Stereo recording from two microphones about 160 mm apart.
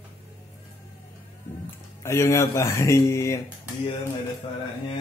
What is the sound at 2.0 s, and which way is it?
Speech, 15° left (ahead or behind).